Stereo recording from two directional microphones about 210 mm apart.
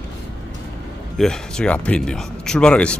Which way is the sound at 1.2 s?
5° left (ahead or behind).